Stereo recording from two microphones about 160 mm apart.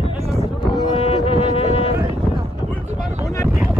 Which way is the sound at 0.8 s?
35° left (ahead or behind).